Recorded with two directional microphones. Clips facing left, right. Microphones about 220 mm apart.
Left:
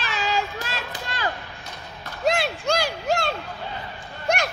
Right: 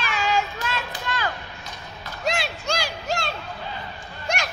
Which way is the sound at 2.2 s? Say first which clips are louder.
Left 4 dB; 55° left (ahead or behind).